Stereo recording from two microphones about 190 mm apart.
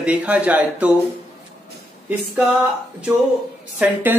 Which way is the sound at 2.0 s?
5° right (ahead or behind).